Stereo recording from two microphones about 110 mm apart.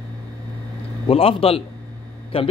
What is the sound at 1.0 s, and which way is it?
Speech, 60° left (ahead or behind).